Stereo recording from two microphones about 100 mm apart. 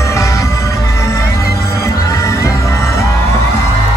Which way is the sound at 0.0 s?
30° left (ahead or behind).